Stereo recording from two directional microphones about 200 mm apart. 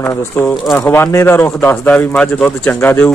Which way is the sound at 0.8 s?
10° left (ahead or behind).